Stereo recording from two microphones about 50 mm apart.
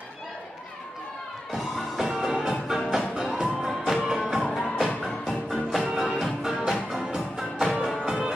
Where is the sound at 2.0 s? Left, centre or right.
Centre.